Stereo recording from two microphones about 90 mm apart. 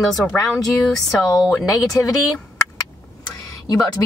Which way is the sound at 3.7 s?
45° left (ahead or behind).